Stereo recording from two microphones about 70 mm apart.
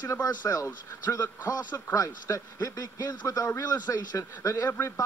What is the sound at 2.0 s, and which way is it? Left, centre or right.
Speech, left.